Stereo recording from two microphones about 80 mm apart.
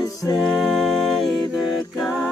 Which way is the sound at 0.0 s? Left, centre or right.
Left.